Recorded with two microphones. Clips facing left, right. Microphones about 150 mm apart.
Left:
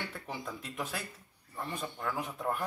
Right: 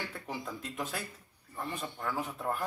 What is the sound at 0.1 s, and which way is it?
Speech, 10° right (ahead or behind).